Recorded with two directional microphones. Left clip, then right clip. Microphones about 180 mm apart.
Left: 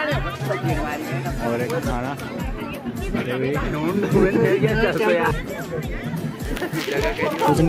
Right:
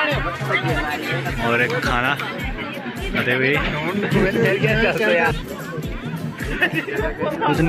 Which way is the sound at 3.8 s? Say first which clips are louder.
Left 1 dB; 60° left (ahead or behind).